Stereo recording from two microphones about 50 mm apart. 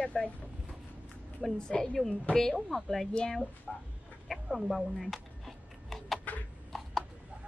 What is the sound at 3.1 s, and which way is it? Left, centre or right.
Speech, centre.